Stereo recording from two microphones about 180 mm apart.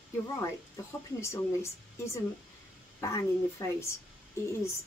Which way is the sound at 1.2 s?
15° left (ahead or behind).